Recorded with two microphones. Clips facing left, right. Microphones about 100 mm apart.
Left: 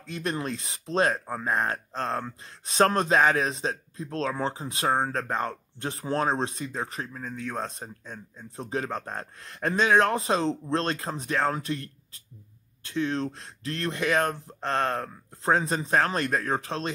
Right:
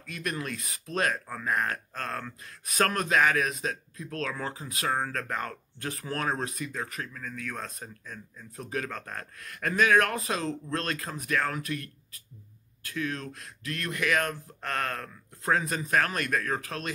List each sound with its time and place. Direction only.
0.0 s speech: 30° left (ahead or behind)